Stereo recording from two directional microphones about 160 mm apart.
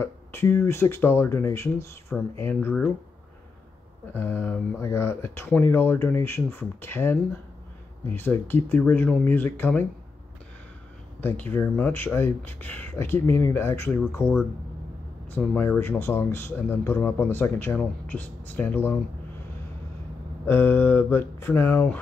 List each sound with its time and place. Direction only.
0.0 s speech: 15° left (ahead or behind)
4.2 s speech: 10° left (ahead or behind)
11.1 s speech: 10° left (ahead or behind)
20.4 s speech: 15° left (ahead or behind)